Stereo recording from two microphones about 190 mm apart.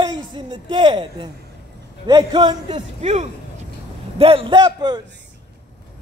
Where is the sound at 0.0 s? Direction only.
25° right (ahead or behind).